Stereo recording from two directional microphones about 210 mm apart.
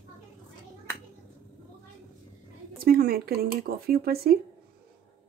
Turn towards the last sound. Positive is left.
turn(degrees=-45)  # may be behind; listen again after turning